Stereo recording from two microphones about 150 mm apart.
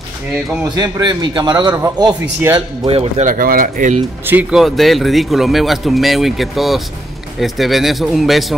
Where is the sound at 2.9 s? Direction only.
40° right (ahead or behind).